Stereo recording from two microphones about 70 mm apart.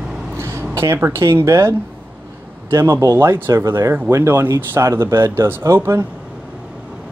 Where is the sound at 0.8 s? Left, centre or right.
Right.